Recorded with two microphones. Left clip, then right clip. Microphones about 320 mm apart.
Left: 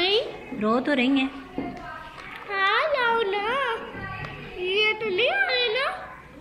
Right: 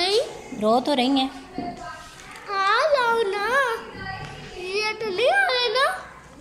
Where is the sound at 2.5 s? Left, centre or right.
Centre.